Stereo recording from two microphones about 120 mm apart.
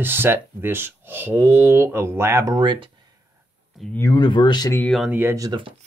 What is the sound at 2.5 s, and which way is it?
Speech, 40° right (ahead or behind).